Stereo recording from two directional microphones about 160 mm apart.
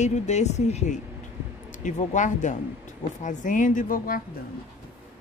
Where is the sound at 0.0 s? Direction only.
45° left (ahead or behind).